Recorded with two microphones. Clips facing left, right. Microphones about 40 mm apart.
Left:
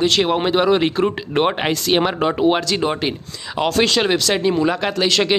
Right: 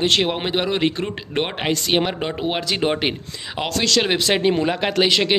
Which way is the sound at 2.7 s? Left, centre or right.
Right.